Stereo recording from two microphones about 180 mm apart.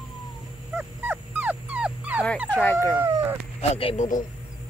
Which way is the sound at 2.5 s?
10° left (ahead or behind).